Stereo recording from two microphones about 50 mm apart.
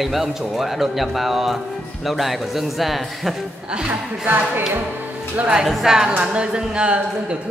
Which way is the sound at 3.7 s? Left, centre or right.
Right.